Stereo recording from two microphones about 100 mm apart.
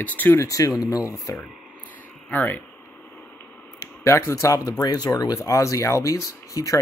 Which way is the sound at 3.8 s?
25° left (ahead or behind).